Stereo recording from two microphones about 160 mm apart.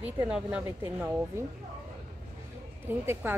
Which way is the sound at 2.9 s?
15° right (ahead or behind).